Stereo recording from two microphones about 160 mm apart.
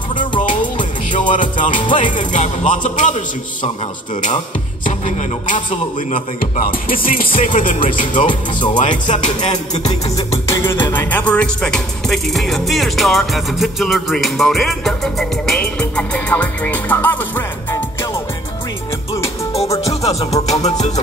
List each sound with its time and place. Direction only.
0.1 s music: 30° left (ahead or behind)
1.1 s music: 55° left (ahead or behind)
1.7 s music: 30° left (ahead or behind)
2.3 s a man's voice: 50° left (ahead or behind)
4.8 s speech: 50° left (ahead or behind)
9.0 s music: 30° left (ahead or behind)
9.5 s a man's voice: 45° left (ahead or behind)
10.5 s music: 15° left (ahead or behind)
20.1 s music: 40° left (ahead or behind)
20.6 s a man's voice: 45° left (ahead or behind)